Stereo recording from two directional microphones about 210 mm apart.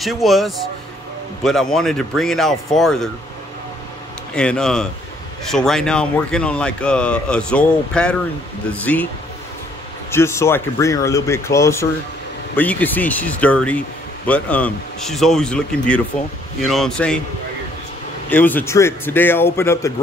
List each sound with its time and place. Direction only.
0.0 s speech: centre (ahead or behind)
4.4 s speech: 5° left (ahead or behind)
10.1 s speech: 10° left (ahead or behind)
18.3 s speech: 10° left (ahead or behind)